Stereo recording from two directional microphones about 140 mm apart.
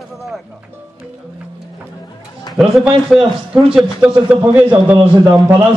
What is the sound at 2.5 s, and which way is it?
A man's voice, centre (ahead or behind).